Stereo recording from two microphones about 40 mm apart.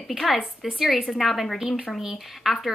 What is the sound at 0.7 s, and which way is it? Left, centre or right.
Speech, centre.